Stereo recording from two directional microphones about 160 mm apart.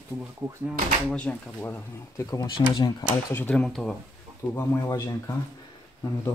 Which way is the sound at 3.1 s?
15° left (ahead or behind).